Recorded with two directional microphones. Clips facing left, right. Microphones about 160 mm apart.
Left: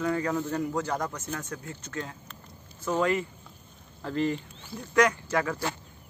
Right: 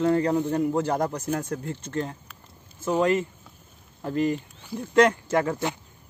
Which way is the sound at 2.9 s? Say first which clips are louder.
Right 4 dB; 20° right (ahead or behind).